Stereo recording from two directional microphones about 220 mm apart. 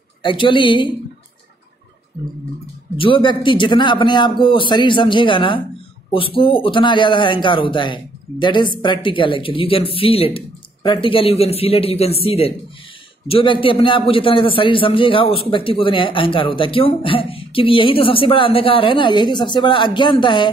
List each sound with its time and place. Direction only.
0.2 s a man's voice: 20° left (ahead or behind)
3.0 s a man's voice: 20° left (ahead or behind)